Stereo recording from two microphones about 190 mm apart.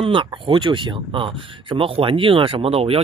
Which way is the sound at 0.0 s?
25° right (ahead or behind).